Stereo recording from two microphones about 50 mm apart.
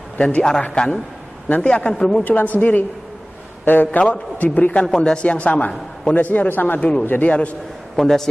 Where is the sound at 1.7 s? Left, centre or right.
Centre.